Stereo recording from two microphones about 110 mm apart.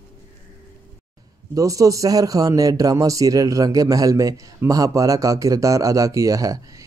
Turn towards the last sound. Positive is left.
turn(degrees=-30)  # may be behind; listen again after turning